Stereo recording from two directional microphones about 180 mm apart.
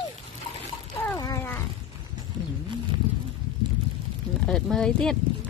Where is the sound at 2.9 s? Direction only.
25° right (ahead or behind).